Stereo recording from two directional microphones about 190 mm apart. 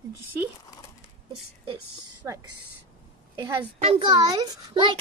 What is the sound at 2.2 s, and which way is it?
Speech, 15° right (ahead or behind).